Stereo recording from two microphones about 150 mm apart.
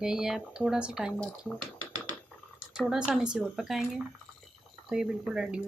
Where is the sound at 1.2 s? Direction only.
5° left (ahead or behind).